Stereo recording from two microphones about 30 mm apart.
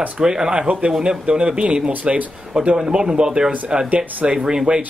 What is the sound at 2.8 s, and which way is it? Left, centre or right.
Speech, right.